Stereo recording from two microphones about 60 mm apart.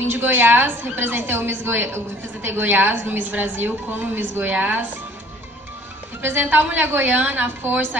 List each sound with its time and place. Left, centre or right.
0.0 s a woman's voice: right
6.2 s a woman's voice: right